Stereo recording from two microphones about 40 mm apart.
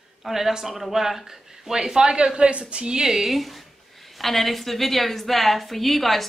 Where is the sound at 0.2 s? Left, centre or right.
Centre.